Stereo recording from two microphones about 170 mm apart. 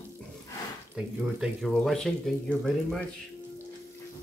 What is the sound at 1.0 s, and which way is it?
Speech, centre (ahead or behind).